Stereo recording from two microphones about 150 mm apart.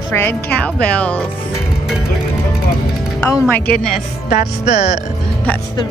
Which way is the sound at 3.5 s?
10° left (ahead or behind).